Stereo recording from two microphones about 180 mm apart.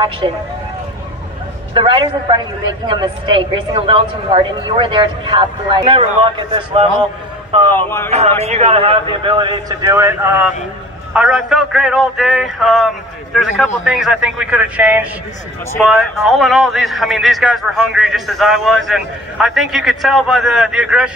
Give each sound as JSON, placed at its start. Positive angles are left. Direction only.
{"t": 0.2, "sound": "a woman's voice", "side_deg": -30}
{"t": 1.7, "sound": "a woman's voice", "side_deg": -30}
{"t": 7.7, "sound": "speech", "side_deg": 15}
{"t": 8.5, "sound": "a woman's voice", "side_deg": -35}